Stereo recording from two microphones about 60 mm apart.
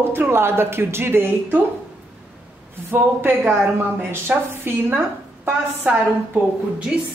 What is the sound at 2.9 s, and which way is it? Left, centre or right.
Speech, right.